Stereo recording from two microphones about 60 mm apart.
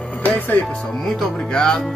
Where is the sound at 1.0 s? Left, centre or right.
Centre.